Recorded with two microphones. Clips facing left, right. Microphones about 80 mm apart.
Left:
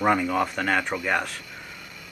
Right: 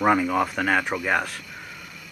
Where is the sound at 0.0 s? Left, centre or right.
Centre.